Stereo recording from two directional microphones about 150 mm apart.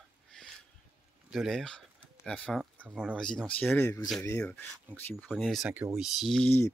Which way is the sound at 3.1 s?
5° left (ahead or behind).